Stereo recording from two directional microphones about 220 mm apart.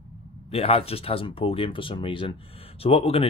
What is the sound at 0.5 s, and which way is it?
Speech, 25° left (ahead or behind).